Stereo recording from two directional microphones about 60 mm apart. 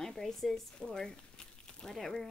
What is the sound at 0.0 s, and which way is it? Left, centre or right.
Speech, centre.